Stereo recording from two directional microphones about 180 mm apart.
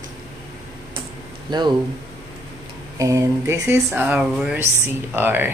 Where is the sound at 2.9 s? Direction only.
15° right (ahead or behind).